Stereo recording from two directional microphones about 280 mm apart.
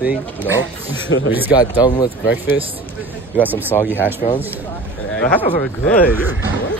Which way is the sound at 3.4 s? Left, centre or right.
Centre.